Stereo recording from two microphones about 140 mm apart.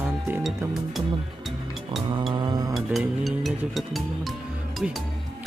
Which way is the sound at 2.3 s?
30° right (ahead or behind).